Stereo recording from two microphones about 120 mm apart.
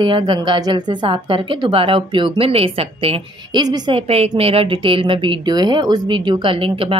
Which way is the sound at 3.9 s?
60° right (ahead or behind).